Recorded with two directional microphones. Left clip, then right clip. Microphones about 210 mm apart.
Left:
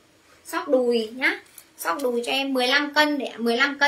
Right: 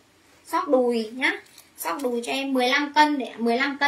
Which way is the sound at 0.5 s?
15° left (ahead or behind).